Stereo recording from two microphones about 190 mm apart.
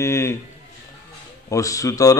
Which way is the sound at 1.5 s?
15° left (ahead or behind).